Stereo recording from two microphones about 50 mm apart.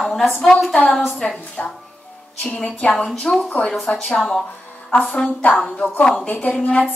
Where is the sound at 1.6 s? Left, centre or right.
Left.